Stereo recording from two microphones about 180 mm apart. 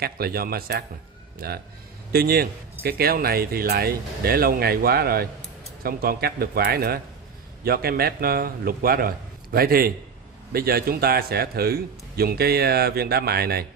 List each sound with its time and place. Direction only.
0.0 s a man's voice: 55° right (ahead or behind)